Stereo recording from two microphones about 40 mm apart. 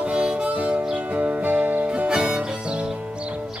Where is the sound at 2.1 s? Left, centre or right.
Right.